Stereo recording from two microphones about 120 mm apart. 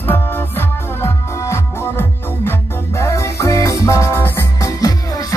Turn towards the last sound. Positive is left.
turn(degrees=30)  # may be behind; listen again after turning